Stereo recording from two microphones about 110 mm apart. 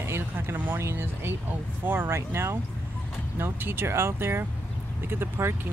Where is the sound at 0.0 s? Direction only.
20° right (ahead or behind).